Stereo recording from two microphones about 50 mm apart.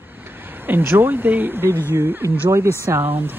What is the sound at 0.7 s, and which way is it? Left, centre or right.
Speech, right.